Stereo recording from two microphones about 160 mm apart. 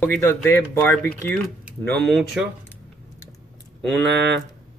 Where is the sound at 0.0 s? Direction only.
10° left (ahead or behind).